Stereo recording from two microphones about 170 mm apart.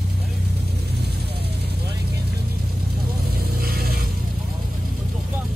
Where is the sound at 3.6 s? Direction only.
65° right (ahead or behind).